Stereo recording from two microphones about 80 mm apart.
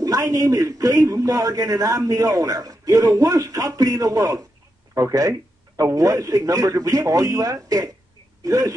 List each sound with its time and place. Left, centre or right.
0.0 s a man's voice: right